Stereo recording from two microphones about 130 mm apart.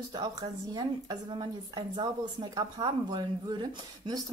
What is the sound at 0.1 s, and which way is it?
A woman's voice, 30° right (ahead or behind).